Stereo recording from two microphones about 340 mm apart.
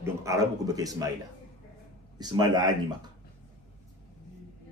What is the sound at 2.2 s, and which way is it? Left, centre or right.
Speech, centre.